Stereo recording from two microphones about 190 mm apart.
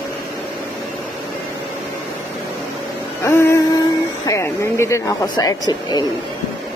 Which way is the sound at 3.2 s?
15° left (ahead or behind).